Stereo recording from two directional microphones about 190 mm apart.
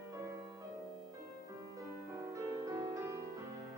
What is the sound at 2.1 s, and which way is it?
Music, 15° right (ahead or behind).